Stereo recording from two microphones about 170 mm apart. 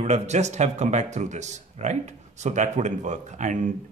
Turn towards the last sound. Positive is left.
turn(degrees=-45)  # may be behind; listen again after turning